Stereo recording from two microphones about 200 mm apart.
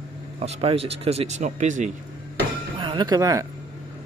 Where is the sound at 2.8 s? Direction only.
20° right (ahead or behind).